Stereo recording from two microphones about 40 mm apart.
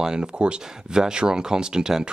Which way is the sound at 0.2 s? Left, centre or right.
Right.